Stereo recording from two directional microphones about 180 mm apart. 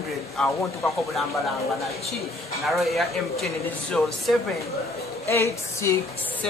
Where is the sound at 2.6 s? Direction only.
Centre (ahead or behind).